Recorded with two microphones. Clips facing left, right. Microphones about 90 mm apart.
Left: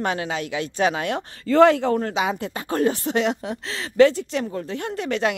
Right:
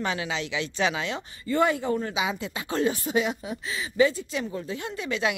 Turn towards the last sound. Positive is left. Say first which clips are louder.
# left 4 dB
turn(degrees=60)  # may be behind; listen again after turning